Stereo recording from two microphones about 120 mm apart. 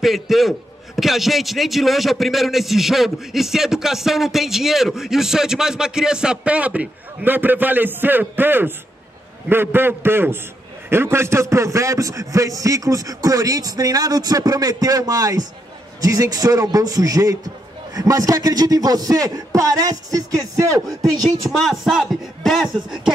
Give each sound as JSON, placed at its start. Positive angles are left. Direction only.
{"t": 0.0, "sound": "a man's voice", "side_deg": 0}
{"t": 21.5, "sound": "a man's voice", "side_deg": 0}